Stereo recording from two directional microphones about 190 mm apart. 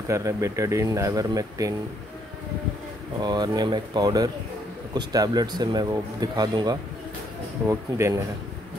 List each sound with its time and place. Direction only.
0.1 s speech: 15° right (ahead or behind)
3.2 s speech: 20° right (ahead or behind)